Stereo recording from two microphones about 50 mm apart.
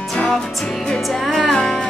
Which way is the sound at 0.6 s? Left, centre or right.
Centre.